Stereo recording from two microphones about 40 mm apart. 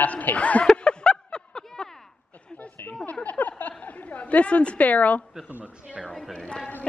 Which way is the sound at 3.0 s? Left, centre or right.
Left.